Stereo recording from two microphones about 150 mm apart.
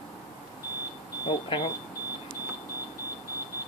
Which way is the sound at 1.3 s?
30° left (ahead or behind).